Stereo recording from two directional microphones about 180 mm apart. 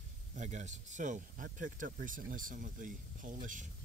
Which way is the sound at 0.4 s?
40° right (ahead or behind).